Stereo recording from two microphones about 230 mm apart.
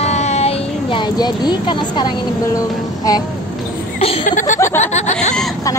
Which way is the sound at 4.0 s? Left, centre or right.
Left.